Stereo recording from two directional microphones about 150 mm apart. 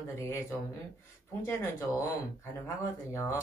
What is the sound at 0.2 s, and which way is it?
Speech, 20° left (ahead or behind).